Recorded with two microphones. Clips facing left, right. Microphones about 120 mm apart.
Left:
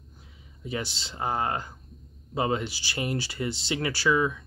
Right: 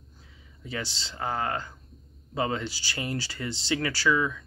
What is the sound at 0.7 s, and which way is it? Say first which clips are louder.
Speech: left 2 dB; 20° left (ahead or behind).